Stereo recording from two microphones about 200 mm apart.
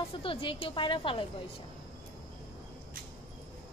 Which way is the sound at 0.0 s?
25° left (ahead or behind).